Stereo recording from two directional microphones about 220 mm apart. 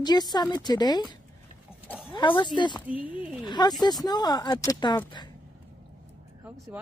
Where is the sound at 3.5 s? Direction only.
20° left (ahead or behind).